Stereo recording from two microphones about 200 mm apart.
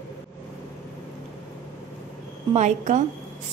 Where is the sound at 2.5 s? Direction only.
35° right (ahead or behind).